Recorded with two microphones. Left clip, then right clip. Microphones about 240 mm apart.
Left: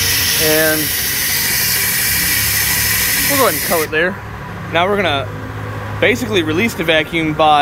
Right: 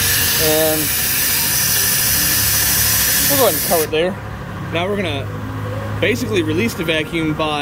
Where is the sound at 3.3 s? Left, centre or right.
Centre.